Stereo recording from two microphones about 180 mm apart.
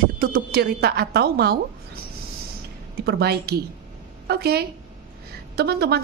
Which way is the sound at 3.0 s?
65° right (ahead or behind).